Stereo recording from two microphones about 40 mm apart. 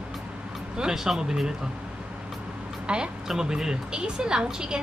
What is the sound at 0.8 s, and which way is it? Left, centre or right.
Speech, centre.